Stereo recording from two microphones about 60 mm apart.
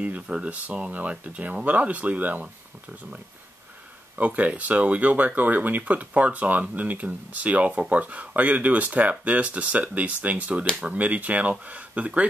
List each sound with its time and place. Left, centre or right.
0.0 s speech: centre
4.2 s speech: right